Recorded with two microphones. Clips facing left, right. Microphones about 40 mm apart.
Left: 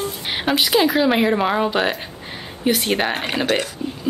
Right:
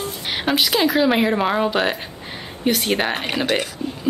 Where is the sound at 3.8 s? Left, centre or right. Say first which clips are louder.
Even; centre.